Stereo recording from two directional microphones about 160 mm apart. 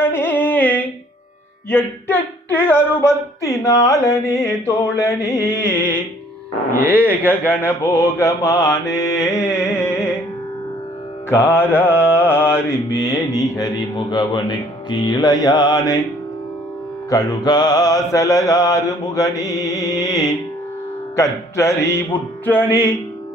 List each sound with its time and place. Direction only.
0.0 s music: 15° left (ahead or behind)
1.7 s speech: 15° left (ahead or behind)
7.0 s speech: 10° left (ahead or behind)
11.2 s speech: 15° left (ahead or behind)
14.3 s mantra: 25° left (ahead or behind)
17.1 s mantra: 25° left (ahead or behind)
21.2 s speech: 20° left (ahead or behind)